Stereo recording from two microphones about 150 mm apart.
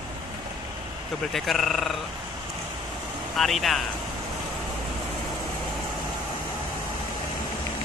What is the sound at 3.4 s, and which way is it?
Speech, centre (ahead or behind).